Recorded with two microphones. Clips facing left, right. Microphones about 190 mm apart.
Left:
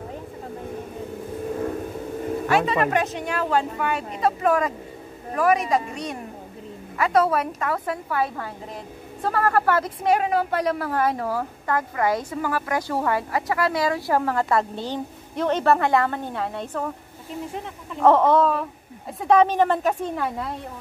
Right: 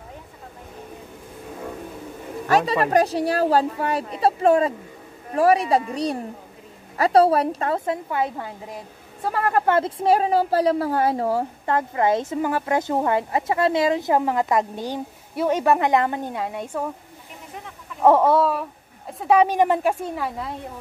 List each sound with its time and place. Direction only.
2.4 s a woman's voice: 40° right (ahead or behind); by 16.9 s 10° right (ahead or behind)
18.0 s a woman's voice: 10° right (ahead or behind)